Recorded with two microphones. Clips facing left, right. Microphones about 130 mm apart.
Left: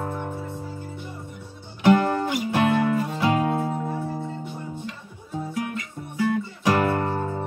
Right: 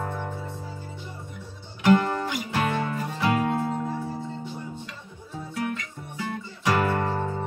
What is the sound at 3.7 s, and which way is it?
Music, 5° left (ahead or behind).